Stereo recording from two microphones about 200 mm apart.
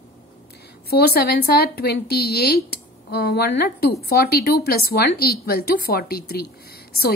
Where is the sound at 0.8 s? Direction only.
50° left (ahead or behind).